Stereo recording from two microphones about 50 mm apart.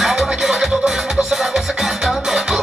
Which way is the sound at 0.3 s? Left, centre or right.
Centre.